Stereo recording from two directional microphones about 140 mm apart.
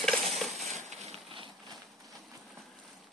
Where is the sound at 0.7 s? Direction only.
50° right (ahead or behind).